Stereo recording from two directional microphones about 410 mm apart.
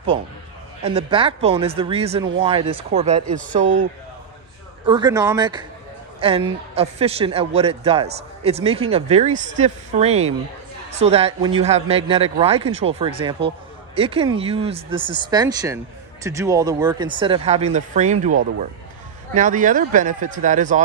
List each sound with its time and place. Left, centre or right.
0.8 s speech: centre
4.8 s speech: centre